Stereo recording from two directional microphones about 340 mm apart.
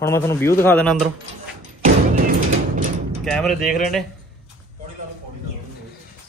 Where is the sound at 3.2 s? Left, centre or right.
Centre.